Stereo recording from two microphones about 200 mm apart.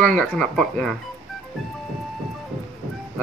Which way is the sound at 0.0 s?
5° left (ahead or behind).